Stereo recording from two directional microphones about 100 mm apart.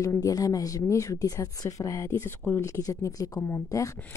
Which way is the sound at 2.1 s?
20° left (ahead or behind).